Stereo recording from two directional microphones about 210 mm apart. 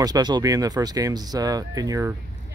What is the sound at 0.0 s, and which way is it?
Speech, 20° right (ahead or behind).